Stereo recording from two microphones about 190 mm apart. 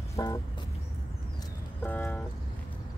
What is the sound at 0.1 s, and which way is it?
Vehicle, 15° left (ahead or behind).